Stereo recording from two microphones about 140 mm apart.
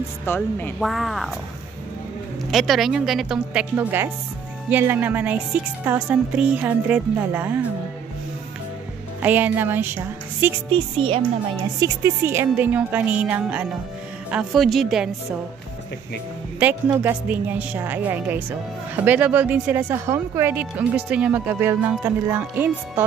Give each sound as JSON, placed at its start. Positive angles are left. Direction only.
{"t": 0.2, "sound": "a woman's voice", "side_deg": 15}
{"t": 0.7, "sound": "speech", "side_deg": 0}
{"t": 2.5, "sound": "speech", "side_deg": 0}
{"t": 9.2, "sound": "speech", "side_deg": -15}
{"t": 10.7, "sound": "speech", "side_deg": -40}
{"t": 11.8, "sound": "speech", "side_deg": -20}
{"t": 16.9, "sound": "speech", "side_deg": -15}